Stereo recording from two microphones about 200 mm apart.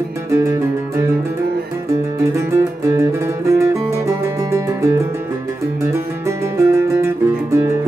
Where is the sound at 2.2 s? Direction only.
15° right (ahead or behind).